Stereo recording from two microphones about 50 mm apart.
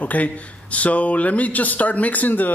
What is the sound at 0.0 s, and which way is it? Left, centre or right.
Speech, left.